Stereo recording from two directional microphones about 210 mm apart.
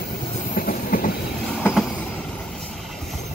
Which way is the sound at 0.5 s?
40° left (ahead or behind).